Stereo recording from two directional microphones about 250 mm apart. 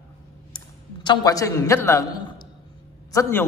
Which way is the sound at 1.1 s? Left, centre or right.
Centre.